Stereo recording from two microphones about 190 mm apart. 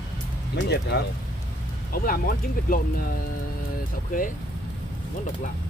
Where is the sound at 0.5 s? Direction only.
60° left (ahead or behind).